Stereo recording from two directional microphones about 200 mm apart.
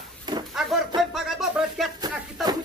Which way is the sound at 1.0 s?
Centre (ahead or behind).